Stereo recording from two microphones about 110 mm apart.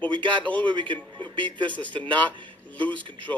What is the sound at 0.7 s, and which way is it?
A woman's voice, 45° right (ahead or behind).